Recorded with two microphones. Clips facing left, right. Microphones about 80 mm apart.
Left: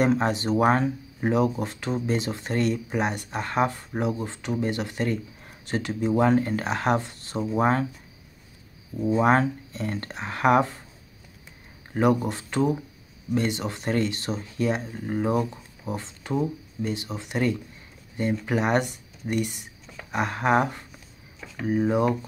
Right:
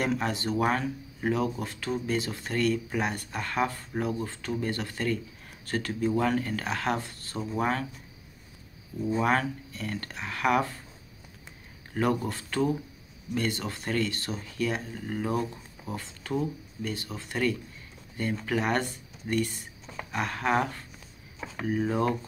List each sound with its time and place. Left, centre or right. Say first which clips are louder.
0.0 s speech: left 6 dB; left
9.2 s speech: left 6 dB; left
11.9 s speech: left 5 dB; centre